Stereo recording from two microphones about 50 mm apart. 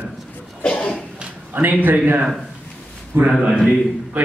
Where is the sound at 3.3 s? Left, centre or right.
Centre.